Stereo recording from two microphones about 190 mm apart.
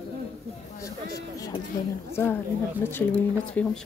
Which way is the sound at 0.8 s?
20° left (ahead or behind).